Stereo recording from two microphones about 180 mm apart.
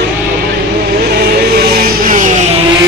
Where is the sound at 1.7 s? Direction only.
55° right (ahead or behind).